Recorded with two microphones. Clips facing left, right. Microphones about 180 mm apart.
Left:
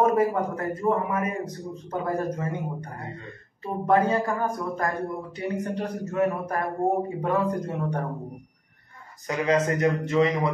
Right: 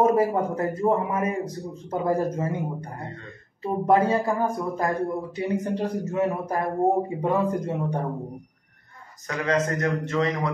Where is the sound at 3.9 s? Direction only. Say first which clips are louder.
Right 1 dB; 20° right (ahead or behind).